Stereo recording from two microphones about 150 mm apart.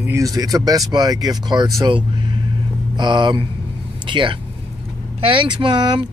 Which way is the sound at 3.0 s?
30° right (ahead or behind).